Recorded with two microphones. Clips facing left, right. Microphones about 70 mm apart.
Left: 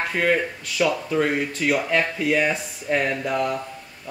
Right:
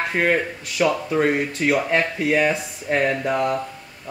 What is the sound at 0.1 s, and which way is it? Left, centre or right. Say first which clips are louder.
Speech: right 1 dB; centre.